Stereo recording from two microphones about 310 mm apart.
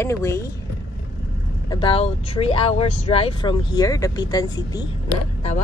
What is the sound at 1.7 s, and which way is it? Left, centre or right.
Speech, centre.